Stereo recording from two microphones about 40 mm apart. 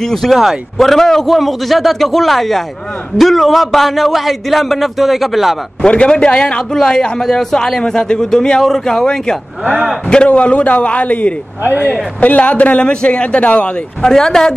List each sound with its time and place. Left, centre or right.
0.0 s a man's voice: centre
0.3 s speech: centre
0.7 s a man's voice: centre
5.9 s a man's voice: left
10.0 s a man's voice: left
11.6 s speech: right
12.2 s a man's voice: left
12.8 s a man's voice: left
14.0 s a man's voice: centre